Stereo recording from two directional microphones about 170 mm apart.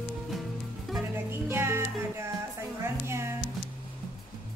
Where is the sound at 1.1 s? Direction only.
15° right (ahead or behind).